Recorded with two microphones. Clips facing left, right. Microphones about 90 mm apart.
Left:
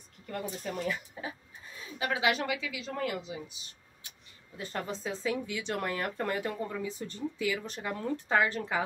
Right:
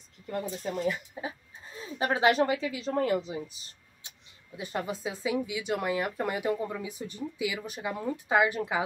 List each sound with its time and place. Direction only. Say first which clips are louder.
0.3 s speech: right 3 dB; 20° right (ahead or behind)
1.8 s a woman's voice: right 5 dB; 40° right (ahead or behind)
4.0 s a sound: right 1 dB; 25° right (ahead or behind)
4.6 s speech: right 3 dB; 15° right (ahead or behind)